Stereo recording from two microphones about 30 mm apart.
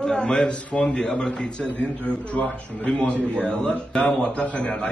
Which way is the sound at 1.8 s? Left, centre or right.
Left.